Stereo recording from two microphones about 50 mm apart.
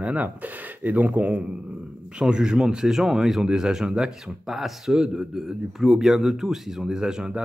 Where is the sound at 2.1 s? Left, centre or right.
Centre.